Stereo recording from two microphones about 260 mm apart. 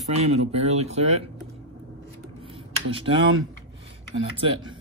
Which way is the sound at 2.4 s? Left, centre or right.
Right.